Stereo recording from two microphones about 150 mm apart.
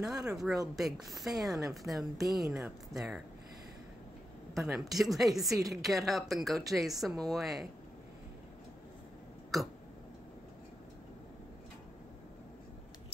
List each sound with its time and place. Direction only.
0.0 s a woman's voice: 5° right (ahead or behind)
4.6 s a woman's voice: centre (ahead or behind)